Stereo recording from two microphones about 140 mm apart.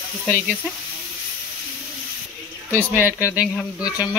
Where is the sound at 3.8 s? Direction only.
25° left (ahead or behind).